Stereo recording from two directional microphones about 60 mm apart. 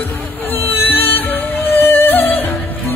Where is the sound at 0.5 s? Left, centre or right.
Left.